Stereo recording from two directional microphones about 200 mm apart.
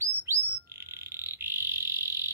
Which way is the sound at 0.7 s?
10° right (ahead or behind).